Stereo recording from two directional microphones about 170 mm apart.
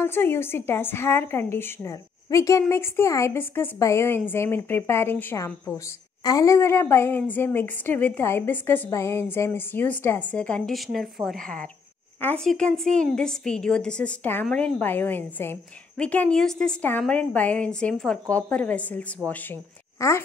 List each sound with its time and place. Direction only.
0.0 s a woman's voice: 15° left (ahead or behind)